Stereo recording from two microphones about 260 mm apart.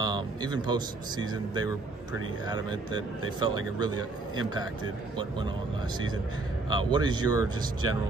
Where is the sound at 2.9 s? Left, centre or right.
Left.